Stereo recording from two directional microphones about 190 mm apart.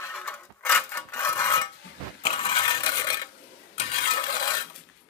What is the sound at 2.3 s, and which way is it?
Stir, 25° left (ahead or behind).